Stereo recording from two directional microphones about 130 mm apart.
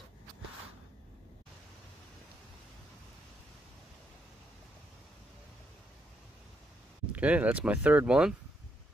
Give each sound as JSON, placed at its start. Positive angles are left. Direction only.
{"t": 7.1, "sound": "speech", "side_deg": -10}